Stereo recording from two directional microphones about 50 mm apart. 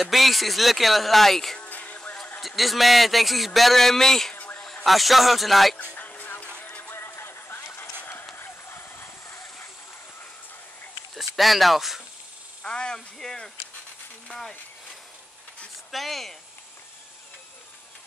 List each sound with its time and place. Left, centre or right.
0.0 s speech: centre
1.6 s music: left
2.4 s speech: centre
5.9 s music: left
6.8 s music: left
8.0 s clip-clop: left
11.1 s speech: centre
12.6 s speech: centre
15.9 s speech: centre